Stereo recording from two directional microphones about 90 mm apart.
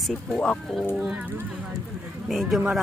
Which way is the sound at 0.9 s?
5° right (ahead or behind).